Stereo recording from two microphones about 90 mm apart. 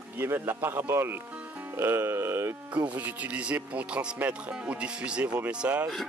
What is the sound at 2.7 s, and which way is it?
Speech, 15° right (ahead or behind).